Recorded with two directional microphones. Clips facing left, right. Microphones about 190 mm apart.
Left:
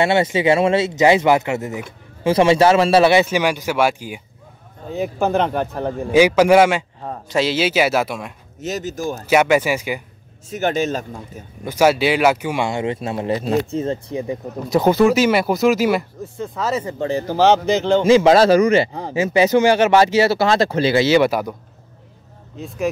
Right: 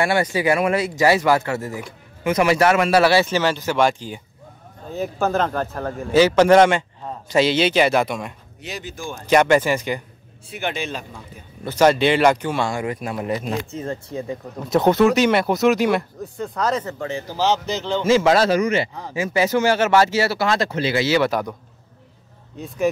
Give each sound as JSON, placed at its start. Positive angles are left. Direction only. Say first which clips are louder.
{"t": 0.0, "sound": "speech", "louder": "left 3 dB", "side_deg": 25}
{"t": 8.5, "sound": "speech", "louder": "left 9 dB", "side_deg": 45}
{"t": 9.2, "sound": "speech", "louder": "even", "side_deg": 5}
{"t": 10.5, "sound": "speech", "louder": "left 7 dB", "side_deg": 40}
{"t": 11.6, "sound": "speech", "louder": "even", "side_deg": 10}
{"t": 13.8, "sound": "speech", "louder": "left 4 dB", "side_deg": 15}
{"t": 14.7, "sound": "speech", "louder": "left 1 dB", "side_deg": 0}
{"t": 17.3, "sound": "speech", "louder": "left 7 dB", "side_deg": 60}
{"t": 18.0, "sound": "speech", "louder": "left 3 dB", "side_deg": 15}
{"t": 18.3, "sound": "speech", "louder": "left 5 dB", "side_deg": 35}
{"t": 19.1, "sound": "speech", "louder": "left 5 dB", "side_deg": 20}
{"t": 21.3, "sound": "speech", "louder": "left 2 dB", "side_deg": 5}